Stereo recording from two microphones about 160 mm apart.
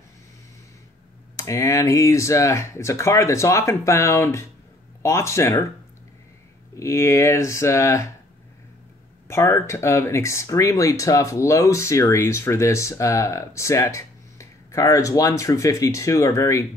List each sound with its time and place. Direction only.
1.3 s speech: 20° left (ahead or behind)
6.8 s speech: 20° left (ahead or behind)
9.3 s speech: 15° left (ahead or behind)